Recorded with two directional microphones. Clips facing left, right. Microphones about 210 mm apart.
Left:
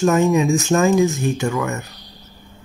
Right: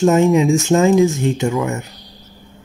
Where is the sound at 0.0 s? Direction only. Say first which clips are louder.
Right 3 dB; 25° right (ahead or behind).